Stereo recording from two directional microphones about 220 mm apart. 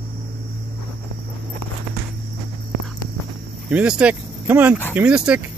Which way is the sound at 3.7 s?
5° right (ahead or behind).